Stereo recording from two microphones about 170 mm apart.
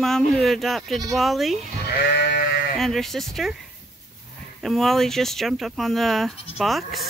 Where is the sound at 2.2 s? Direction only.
70° left (ahead or behind).